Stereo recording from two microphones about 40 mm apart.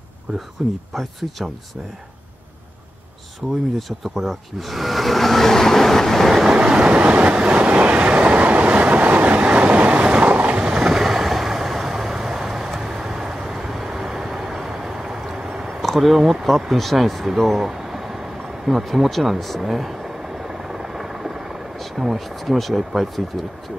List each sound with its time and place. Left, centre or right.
0.6 s speech: centre
3.4 s speech: centre
4.0 s speech: centre
6.3 s train: centre
10.7 s vehicle: centre
15.8 s speech: centre
17.3 s a sound: centre
19.0 s speech: centre
19.6 s vehicle: centre
21.7 s speech: centre